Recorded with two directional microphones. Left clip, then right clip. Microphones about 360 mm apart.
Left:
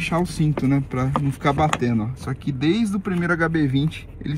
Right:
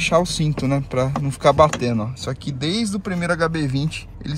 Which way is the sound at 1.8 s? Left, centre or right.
Centre.